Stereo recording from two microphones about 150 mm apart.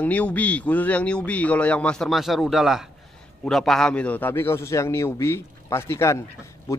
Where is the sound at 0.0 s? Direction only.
10° left (ahead or behind).